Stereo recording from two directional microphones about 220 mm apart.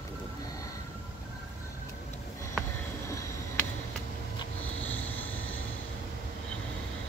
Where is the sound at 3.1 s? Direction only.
15° left (ahead or behind).